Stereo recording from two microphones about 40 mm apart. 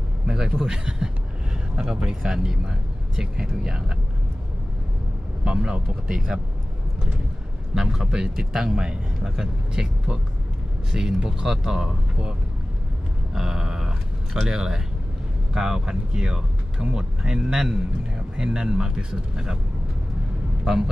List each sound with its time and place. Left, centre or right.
0.3 s a man's voice: right
5.4 s speech: right
7.7 s a man's voice: centre
20.6 s speech: centre